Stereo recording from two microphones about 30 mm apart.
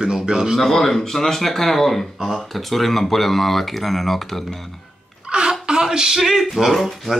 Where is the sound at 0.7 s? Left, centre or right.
Centre.